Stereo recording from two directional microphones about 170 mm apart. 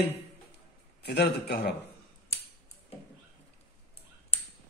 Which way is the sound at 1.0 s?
75° left (ahead or behind).